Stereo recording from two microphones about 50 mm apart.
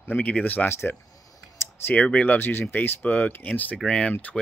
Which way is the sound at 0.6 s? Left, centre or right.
Left.